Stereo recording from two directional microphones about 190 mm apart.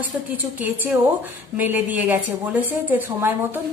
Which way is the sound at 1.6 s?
10° right (ahead or behind).